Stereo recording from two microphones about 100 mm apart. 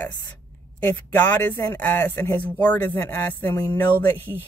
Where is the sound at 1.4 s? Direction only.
15° left (ahead or behind).